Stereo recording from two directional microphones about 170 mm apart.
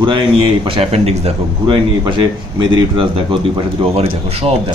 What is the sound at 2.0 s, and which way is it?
A man's voice, 25° right (ahead or behind).